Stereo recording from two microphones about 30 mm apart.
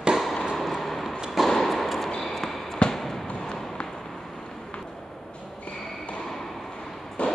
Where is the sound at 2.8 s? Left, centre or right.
Left.